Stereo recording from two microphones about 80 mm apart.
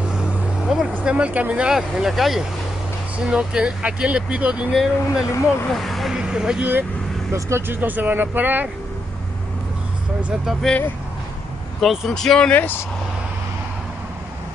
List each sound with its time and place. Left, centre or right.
0.1 s vehicle: centre
1.0 s speech: centre
4.7 s speech: centre
5.2 s speech: left
5.7 s speech: centre
6.1 s speech: centre
7.3 s speech: right
10.6 s speech: centre
12.1 s speech: centre; by 12.8 s left